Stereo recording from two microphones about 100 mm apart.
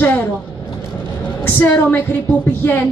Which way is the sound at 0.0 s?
20° left (ahead or behind).